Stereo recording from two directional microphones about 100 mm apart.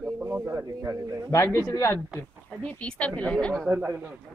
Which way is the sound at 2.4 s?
10° left (ahead or behind).